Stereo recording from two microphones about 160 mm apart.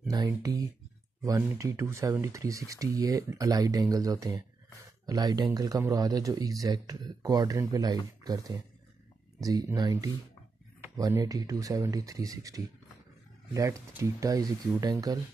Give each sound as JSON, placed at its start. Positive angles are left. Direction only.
{"t": 0.1, "sound": "speech", "side_deg": -20}